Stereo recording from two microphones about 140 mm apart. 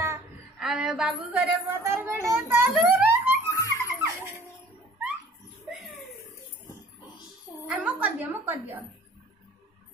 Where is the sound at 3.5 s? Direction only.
25° left (ahead or behind).